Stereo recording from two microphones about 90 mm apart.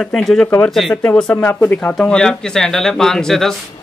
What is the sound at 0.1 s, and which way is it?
Speech, 5° left (ahead or behind).